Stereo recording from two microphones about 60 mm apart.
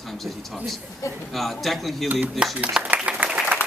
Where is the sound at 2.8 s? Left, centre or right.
Right.